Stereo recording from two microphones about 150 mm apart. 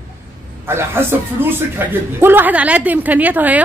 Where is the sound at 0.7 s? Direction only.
15° right (ahead or behind).